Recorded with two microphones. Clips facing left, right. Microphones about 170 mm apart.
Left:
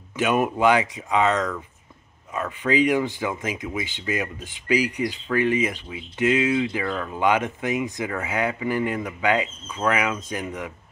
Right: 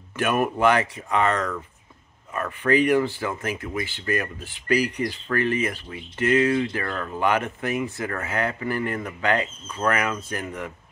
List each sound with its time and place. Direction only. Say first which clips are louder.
0.1 s speech: left 1 dB; 15° left (ahead or behind)